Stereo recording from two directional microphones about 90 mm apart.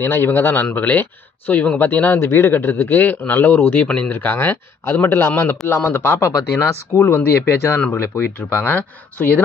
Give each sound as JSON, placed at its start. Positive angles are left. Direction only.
{"t": 0.0, "sound": "a man's voice", "side_deg": 25}